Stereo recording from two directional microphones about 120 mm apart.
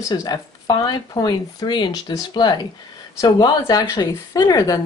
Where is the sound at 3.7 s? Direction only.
30° left (ahead or behind).